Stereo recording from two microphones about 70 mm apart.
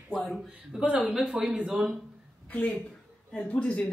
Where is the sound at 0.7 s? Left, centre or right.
Centre.